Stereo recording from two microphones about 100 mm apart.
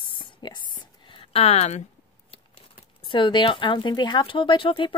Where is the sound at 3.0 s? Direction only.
55° left (ahead or behind).